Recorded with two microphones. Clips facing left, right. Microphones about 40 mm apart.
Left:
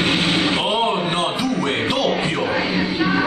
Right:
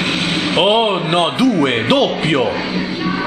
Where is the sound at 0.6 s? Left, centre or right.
Right.